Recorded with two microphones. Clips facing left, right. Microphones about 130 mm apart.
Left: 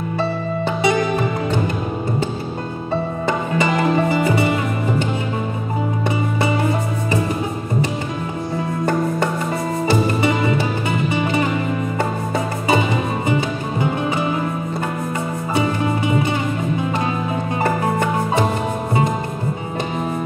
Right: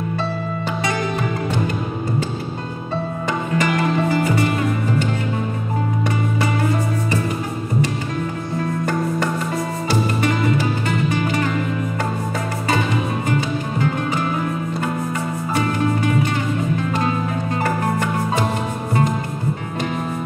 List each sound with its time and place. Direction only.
3.5 s music: 20° left (ahead or behind)
10.2 s music: 15° left (ahead or behind)
13.3 s music: 20° left (ahead or behind)
15.5 s music: 15° left (ahead or behind)